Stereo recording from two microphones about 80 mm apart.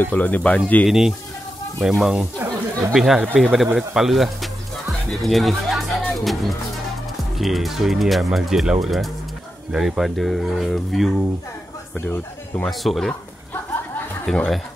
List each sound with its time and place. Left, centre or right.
0.1 s speech: centre
0.8 s speech: centre
2.3 s a sound: right
2.9 s speech: centre
12.6 s speech: centre
14.2 s speech: centre